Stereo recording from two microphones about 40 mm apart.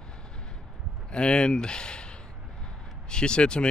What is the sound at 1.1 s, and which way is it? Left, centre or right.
Speech, left.